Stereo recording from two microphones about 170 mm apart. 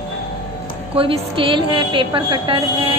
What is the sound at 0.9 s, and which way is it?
A woman's voice, 30° right (ahead or behind).